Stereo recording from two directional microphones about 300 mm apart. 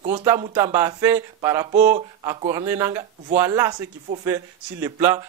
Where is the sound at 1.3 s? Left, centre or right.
Centre.